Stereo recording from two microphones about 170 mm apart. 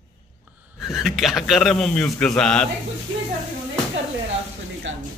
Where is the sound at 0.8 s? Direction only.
Centre (ahead or behind).